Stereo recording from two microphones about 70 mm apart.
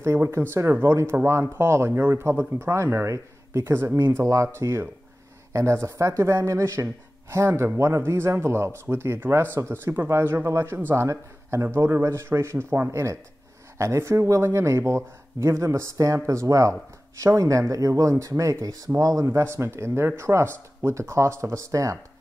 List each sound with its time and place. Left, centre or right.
0.0 s a man's voice: right